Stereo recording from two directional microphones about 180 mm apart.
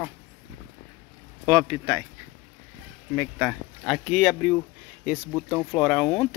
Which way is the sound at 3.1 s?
5° right (ahead or behind).